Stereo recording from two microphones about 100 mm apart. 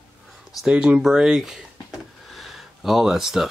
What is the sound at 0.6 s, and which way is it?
Speech, 10° right (ahead or behind).